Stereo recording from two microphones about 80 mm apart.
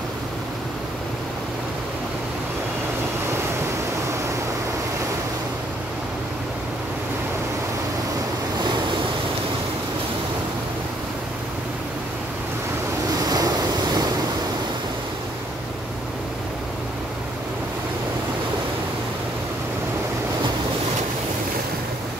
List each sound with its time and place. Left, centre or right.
13.2 s waves: right